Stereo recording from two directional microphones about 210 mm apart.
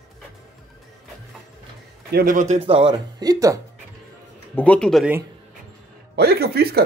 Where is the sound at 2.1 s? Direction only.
40° right (ahead or behind); by 3.6 s 15° right (ahead or behind).